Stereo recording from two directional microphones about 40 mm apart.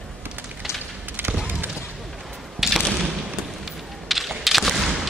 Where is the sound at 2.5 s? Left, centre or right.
Centre.